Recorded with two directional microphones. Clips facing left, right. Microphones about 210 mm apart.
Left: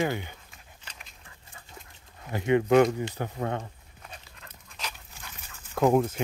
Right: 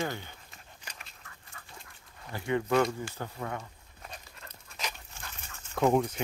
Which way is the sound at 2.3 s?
20° left (ahead or behind).